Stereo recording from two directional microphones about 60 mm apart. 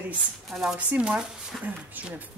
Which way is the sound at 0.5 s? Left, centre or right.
Centre.